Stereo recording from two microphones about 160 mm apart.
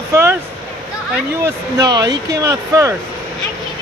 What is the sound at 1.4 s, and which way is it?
Speech, 25° right (ahead or behind).